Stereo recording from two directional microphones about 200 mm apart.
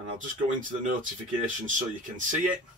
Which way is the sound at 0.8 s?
40° right (ahead or behind).